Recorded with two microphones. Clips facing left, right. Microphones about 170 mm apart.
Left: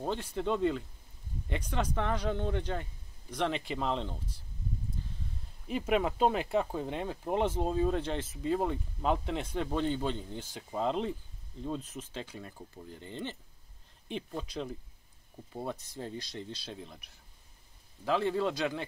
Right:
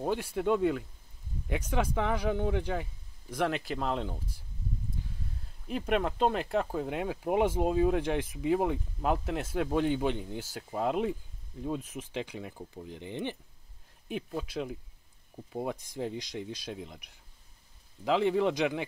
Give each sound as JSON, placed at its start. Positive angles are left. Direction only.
{"t": 0.0, "sound": "speech", "side_deg": -10}
{"t": 5.7, "sound": "speech", "side_deg": 0}